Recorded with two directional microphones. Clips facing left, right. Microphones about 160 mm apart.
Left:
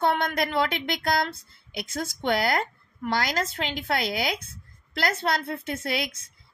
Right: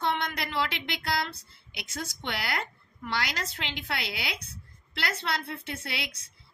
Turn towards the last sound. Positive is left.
turn(degrees=45)  # may be behind; listen again after turning